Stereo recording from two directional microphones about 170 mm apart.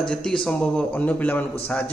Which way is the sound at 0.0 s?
5° left (ahead or behind).